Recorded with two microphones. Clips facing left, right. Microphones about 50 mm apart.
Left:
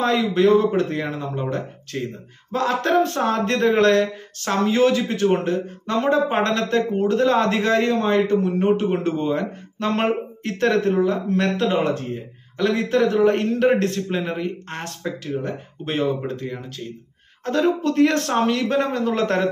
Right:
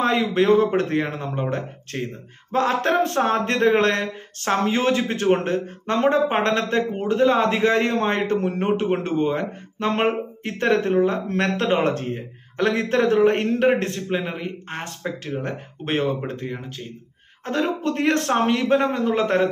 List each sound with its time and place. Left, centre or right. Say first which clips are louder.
0.0 s a man's voice: left 1 dB; right
7.9 s speech: left 3 dB; right
11.2 s a man's voice: left 1 dB; right; by 14.9 s centre
15.4 s speech: even; right
16.3 s speech: left 1 dB; right